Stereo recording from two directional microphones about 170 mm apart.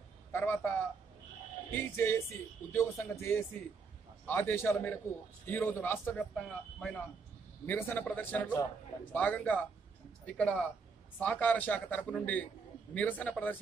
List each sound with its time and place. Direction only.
0.3 s speech: 15° left (ahead or behind)